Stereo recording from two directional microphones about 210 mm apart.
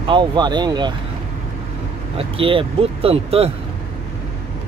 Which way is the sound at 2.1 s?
25° right (ahead or behind).